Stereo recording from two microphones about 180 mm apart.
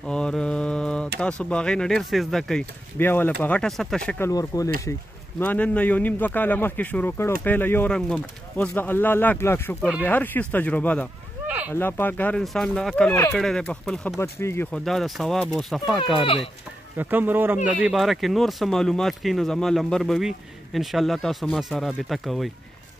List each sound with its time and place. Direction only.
0.0 s mantra: 5° left (ahead or behind)
1.2 s speech: 5° left (ahead or behind)
4.3 s speech: 20° left (ahead or behind)
5.4 s speech: 10° left (ahead or behind)
11.4 s a sound: 10° right (ahead or behind)
11.7 s speech: 10° left (ahead or behind)
16.9 s speech: 10° right (ahead or behind)